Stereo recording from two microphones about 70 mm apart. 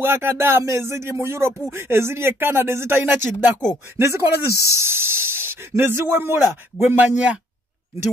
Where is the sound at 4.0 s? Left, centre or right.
Right.